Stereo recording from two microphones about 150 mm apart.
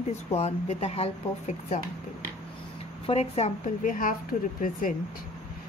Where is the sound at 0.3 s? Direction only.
45° left (ahead or behind).